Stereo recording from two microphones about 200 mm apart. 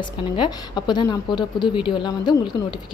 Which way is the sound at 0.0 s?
20° left (ahead or behind).